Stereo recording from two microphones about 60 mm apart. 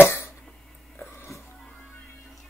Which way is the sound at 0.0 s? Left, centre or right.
Left.